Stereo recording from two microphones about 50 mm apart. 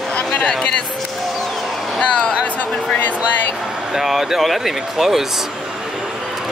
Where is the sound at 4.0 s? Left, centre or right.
Centre.